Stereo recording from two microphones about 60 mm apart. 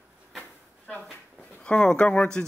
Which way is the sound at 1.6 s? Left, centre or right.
Centre.